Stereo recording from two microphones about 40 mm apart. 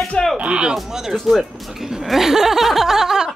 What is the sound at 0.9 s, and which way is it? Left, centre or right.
Music, centre.